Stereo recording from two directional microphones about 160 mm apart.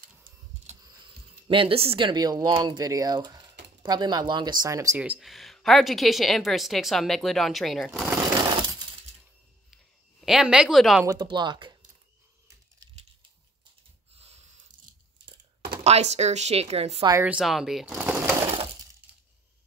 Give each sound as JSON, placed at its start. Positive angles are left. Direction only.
{"t": 0.8, "sound": "speech", "side_deg": -35}
{"t": 4.9, "sound": "a woman's voice", "side_deg": -10}
{"t": 8.2, "sound": "a sound", "side_deg": -25}
{"t": 10.2, "sound": "a woman's voice", "side_deg": -5}
{"t": 11.1, "sound": "speech", "side_deg": -30}
{"t": 14.1, "sound": "a sound", "side_deg": -40}
{"t": 15.8, "sound": "speech", "side_deg": -45}
{"t": 17.2, "sound": "speech", "side_deg": -5}